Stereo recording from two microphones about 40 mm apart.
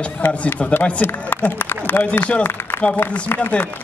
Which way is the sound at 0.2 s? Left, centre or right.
Left.